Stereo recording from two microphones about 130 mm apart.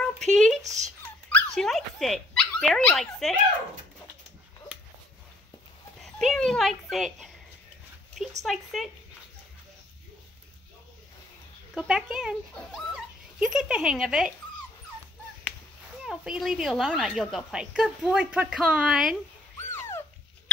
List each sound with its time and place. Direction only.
0.0 s speech: 5° left (ahead or behind)
0.6 s speech: 65° right (ahead or behind)
1.3 s speech: 5° left (ahead or behind)
5.9 s speech: centre (ahead or behind)
8.5 s speech: centre (ahead or behind)
11.9 s speech: 5° right (ahead or behind)
16.1 s speech: 5° right (ahead or behind)
19.7 s dog: 20° left (ahead or behind)